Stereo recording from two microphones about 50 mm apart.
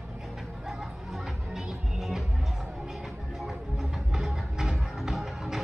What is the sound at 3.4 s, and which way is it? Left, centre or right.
Music, centre.